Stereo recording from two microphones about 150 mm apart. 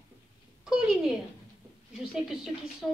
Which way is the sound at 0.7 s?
5° right (ahead or behind).